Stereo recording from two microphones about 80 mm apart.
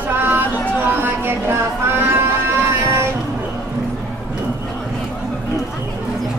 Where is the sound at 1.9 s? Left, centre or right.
Right.